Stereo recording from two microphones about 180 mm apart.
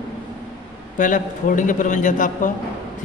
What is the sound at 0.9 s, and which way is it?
A man's voice, 45° left (ahead or behind).